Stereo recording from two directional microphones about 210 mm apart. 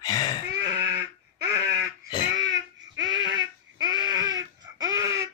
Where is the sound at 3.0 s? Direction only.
20° right (ahead or behind).